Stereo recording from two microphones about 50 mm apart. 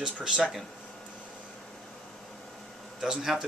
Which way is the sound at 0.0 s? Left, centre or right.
Centre.